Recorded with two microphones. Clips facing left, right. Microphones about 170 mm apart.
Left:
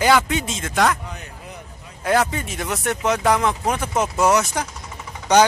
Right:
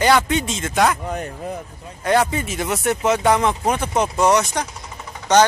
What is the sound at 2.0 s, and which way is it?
Speech, centre (ahead or behind).